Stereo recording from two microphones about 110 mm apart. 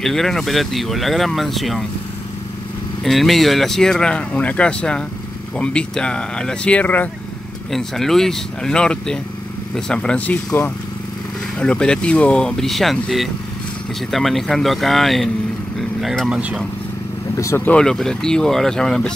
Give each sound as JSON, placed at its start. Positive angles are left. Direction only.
{"t": 0.0, "sound": "speech", "side_deg": 5}
{"t": 3.0, "sound": "speech", "side_deg": 0}
{"t": 7.7, "sound": "speech", "side_deg": 5}
{"t": 17.4, "sound": "speech", "side_deg": 25}
{"t": 17.6, "sound": "speech", "side_deg": 5}